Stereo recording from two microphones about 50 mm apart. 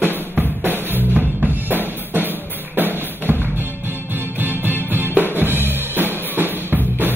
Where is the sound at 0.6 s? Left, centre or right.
Right.